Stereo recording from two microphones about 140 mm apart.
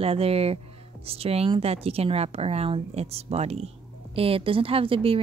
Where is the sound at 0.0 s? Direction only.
45° right (ahead or behind).